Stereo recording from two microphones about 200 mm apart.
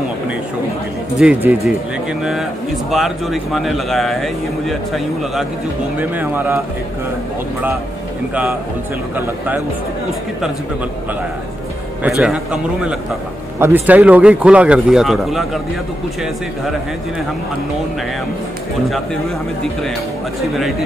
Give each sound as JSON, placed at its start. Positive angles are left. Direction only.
{"t": 1.2, "sound": "speech", "side_deg": -5}
{"t": 2.9, "sound": "a man's voice", "side_deg": 0}
{"t": 12.2, "sound": "a man's voice", "side_deg": -5}